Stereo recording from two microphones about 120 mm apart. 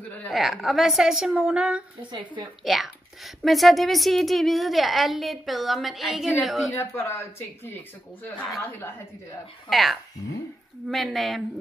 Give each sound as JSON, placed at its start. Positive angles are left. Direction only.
{"t": 0.3, "sound": "a woman's voice", "side_deg": 0}
{"t": 2.0, "sound": "a woman's voice", "side_deg": -40}
{"t": 2.6, "sound": "a woman's voice", "side_deg": 0}
{"t": 6.7, "sound": "speech", "side_deg": 20}
{"t": 9.7, "sound": "a woman's voice", "side_deg": 0}